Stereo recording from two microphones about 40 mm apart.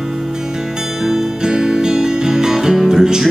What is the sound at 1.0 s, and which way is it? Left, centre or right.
Music, centre.